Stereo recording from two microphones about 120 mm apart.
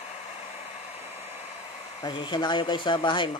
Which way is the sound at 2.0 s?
40° left (ahead or behind).